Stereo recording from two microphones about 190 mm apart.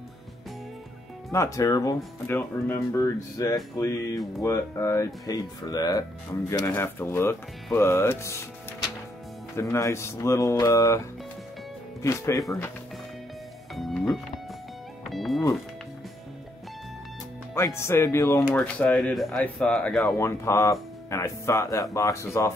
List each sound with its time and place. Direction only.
1.3 s speech: 15° left (ahead or behind)
9.6 s speech: 15° left (ahead or behind)
12.0 s speech: 15° left (ahead or behind)
13.7 s music: centre (ahead or behind)
17.6 s speech: 15° left (ahead or behind)
20.2 s speech: 15° left (ahead or behind)